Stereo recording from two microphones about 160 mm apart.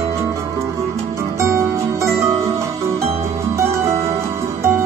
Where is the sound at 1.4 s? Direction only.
15° right (ahead or behind).